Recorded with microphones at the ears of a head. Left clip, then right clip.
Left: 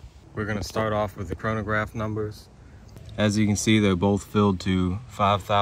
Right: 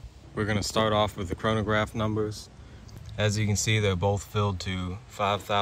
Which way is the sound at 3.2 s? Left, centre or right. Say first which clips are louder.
Left 4 dB; left.